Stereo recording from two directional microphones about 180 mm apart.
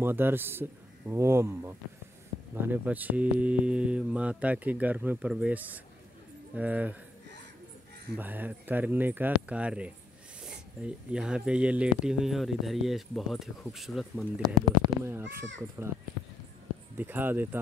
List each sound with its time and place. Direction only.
0.0 s speech: 10° right (ahead or behind)
8.2 s speech: 10° right (ahead or behind)
14.4 s speech: 20° right (ahead or behind)
17.0 s speech: 10° right (ahead or behind)